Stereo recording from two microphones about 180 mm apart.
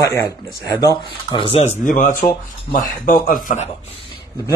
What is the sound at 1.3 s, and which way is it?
Speech, 25° left (ahead or behind).